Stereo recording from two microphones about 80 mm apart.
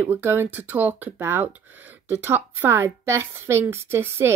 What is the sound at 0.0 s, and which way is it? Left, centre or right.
Speech, right.